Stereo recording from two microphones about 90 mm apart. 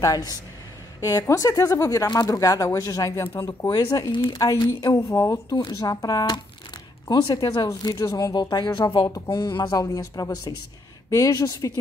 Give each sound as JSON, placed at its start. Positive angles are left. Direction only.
{"t": 0.0, "sound": "speech", "side_deg": 45}
{"t": 3.7, "sound": "speech", "side_deg": 50}
{"t": 4.4, "sound": "speech", "side_deg": 35}
{"t": 7.6, "sound": "speech", "side_deg": 45}